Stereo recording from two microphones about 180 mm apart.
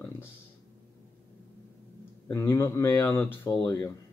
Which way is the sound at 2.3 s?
15° left (ahead or behind).